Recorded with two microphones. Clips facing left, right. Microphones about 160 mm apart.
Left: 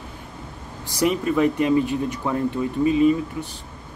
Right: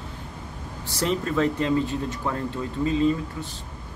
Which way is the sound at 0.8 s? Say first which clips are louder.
Left 5 dB; 15° left (ahead or behind).